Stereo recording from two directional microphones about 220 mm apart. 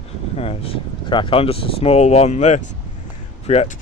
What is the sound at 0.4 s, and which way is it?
Speech, 25° left (ahead or behind).